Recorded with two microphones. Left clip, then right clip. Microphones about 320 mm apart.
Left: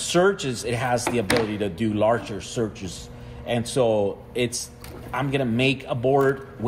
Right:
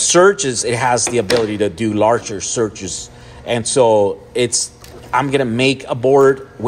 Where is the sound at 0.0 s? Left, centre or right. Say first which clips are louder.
Right 9 dB; right.